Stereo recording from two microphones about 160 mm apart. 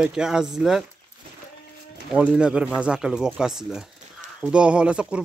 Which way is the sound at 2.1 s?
5° right (ahead or behind).